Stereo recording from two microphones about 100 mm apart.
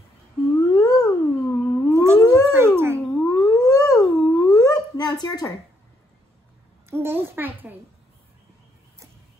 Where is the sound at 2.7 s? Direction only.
25° right (ahead or behind).